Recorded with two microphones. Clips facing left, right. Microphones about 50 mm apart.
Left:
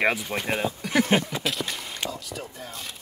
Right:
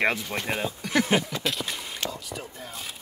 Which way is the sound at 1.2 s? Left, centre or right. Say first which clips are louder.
Left 1 dB; centre.